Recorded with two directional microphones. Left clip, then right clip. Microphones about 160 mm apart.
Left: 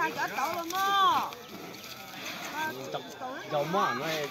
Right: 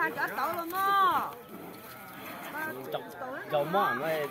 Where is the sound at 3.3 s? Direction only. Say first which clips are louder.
Right 1 dB; 55° left (ahead or behind).